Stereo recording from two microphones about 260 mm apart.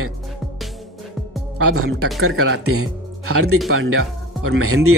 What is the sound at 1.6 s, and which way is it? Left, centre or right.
Speech, right.